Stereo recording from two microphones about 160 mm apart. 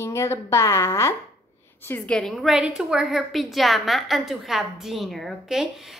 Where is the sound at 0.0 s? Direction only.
15° left (ahead or behind).